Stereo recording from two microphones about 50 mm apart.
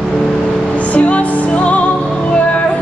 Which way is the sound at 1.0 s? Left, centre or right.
Left.